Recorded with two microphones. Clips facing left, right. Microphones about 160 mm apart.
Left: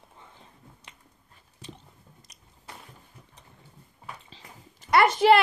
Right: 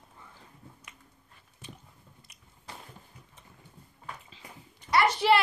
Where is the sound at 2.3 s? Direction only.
40° left (ahead or behind).